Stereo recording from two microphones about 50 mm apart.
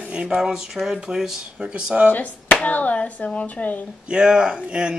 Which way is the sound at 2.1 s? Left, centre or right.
Left.